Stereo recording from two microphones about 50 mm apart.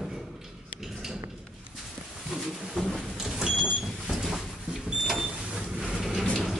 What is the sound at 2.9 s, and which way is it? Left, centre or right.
Vehicle, centre.